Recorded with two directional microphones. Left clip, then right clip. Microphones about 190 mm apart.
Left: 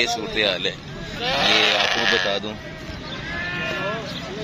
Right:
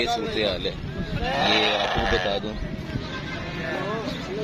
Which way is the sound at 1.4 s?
35° right (ahead or behind).